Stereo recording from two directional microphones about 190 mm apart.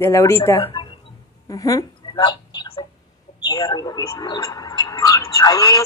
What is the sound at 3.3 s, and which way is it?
Speech, 20° left (ahead or behind).